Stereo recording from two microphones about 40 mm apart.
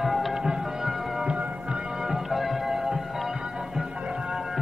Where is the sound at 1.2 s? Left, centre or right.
Right.